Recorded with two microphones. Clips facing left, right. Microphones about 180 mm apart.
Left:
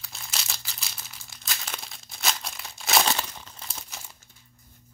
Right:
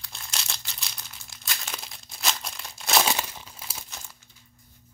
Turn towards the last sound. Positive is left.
turn(degrees=-5)  # may be behind; listen again after turning